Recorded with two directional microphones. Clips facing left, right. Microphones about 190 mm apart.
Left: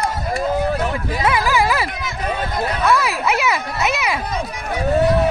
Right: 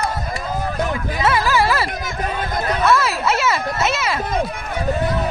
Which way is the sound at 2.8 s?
15° left (ahead or behind).